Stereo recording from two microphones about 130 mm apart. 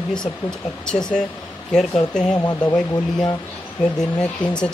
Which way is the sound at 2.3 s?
30° left (ahead or behind).